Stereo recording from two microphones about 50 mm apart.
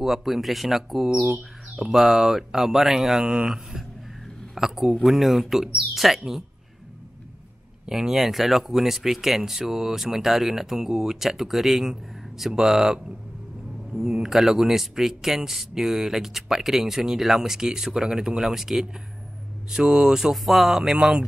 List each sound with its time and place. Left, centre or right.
0.0 s speech: centre
7.9 s speech: centre